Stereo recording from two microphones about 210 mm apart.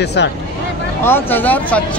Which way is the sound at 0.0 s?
55° left (ahead or behind).